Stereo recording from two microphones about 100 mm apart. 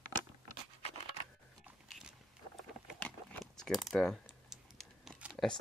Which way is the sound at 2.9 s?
10° left (ahead or behind).